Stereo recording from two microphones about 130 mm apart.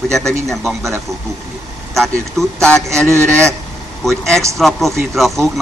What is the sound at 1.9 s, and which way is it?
Speech, centre (ahead or behind).